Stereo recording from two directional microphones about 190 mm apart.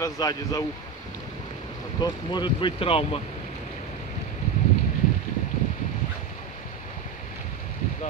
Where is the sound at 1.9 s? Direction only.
25° left (ahead or behind).